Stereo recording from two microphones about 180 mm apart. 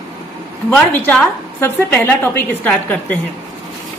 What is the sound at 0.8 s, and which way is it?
A woman's voice, 10° left (ahead or behind).